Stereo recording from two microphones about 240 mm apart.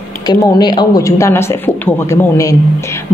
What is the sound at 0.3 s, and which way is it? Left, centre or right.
Speech, centre.